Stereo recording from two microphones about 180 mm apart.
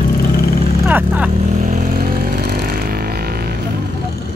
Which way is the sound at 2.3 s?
55° right (ahead or behind).